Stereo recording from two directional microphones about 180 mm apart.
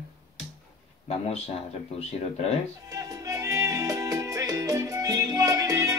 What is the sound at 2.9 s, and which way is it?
Music, 20° right (ahead or behind).